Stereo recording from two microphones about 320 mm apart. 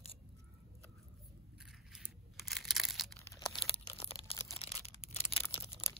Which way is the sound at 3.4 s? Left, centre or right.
Centre.